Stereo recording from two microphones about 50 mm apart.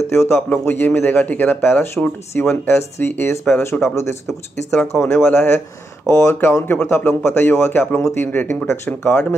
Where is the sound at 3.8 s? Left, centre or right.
Left.